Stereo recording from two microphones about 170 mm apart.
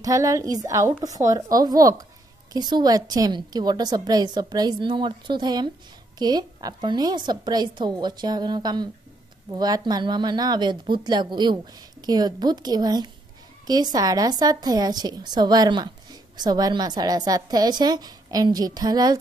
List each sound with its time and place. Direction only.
0.0 s a woman's voice: 20° right (ahead or behind)